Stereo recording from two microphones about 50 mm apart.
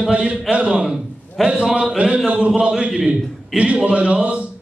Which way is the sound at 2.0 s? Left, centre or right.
Right.